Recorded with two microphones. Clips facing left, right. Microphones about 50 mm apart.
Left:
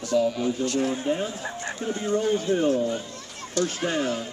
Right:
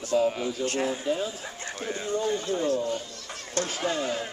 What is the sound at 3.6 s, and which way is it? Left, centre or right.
Speech, right.